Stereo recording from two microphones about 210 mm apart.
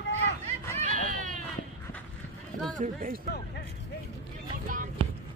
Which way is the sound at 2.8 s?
40° right (ahead or behind).